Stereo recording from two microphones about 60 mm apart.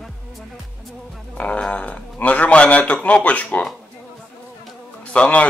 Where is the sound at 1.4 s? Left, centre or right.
Left.